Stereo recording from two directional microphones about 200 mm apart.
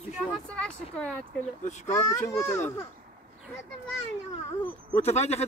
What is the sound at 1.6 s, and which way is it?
Speech, 35° left (ahead or behind).